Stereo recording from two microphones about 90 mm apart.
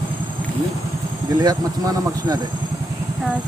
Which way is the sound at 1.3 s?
45° right (ahead or behind).